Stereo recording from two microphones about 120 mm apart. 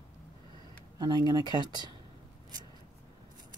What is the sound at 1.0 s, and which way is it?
Speech, 35° right (ahead or behind).